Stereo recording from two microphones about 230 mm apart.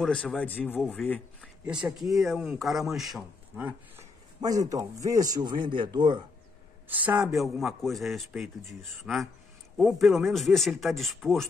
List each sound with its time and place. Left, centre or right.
0.0 s a man's voice: centre
6.9 s a man's voice: centre